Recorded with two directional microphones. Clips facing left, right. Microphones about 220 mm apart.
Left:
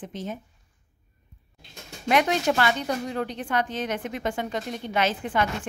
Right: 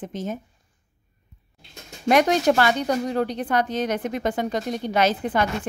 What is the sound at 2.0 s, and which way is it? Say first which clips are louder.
A woman's voice: right 4 dB; 40° right (ahead or behind).